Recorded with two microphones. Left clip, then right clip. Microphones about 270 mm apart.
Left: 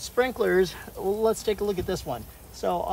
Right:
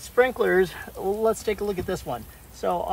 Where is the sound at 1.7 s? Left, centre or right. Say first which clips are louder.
Even; centre.